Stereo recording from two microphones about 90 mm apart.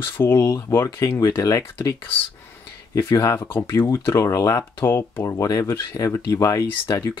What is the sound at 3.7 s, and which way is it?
Speech, 30° left (ahead or behind).